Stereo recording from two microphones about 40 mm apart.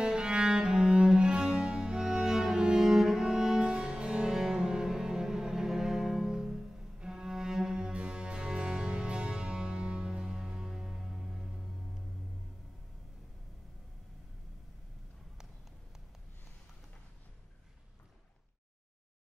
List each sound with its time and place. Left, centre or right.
0.0 s cello: right
4.3 s cello: centre
6.3 s music: centre